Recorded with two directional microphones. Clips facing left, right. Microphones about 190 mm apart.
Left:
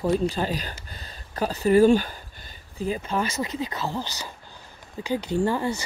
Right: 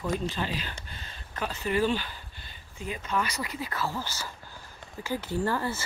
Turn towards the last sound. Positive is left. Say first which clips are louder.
# left 5 dB
turn(degrees=15)  # may be behind; listen again after turning